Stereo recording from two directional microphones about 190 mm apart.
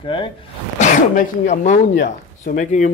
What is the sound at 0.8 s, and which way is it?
Speech, 40° left (ahead or behind).